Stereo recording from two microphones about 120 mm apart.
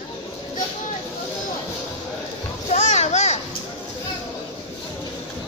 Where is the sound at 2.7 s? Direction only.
70° left (ahead or behind).